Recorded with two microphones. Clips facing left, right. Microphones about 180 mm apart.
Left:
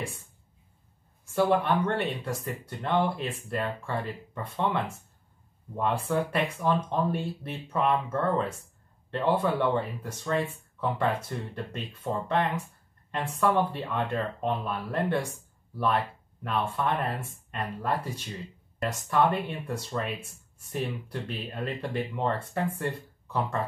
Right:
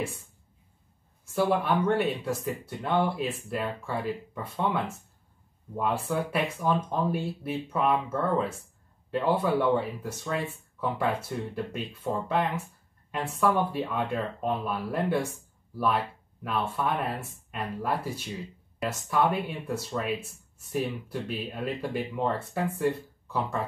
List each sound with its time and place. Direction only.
1.3 s speech: 5° right (ahead or behind)